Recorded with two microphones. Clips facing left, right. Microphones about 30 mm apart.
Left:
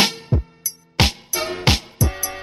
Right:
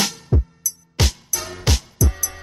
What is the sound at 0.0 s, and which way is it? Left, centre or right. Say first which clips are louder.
Music: left 3 dB; left.